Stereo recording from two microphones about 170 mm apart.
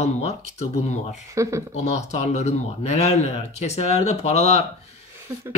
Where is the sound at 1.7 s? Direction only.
40° left (ahead or behind).